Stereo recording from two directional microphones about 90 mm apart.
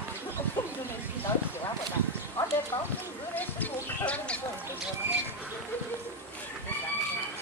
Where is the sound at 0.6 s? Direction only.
30° left (ahead or behind).